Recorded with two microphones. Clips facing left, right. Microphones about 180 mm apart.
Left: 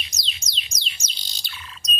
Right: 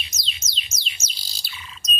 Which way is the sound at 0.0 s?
Centre (ahead or behind).